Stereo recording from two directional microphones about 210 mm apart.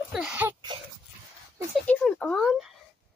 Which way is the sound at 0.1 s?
5° right (ahead or behind).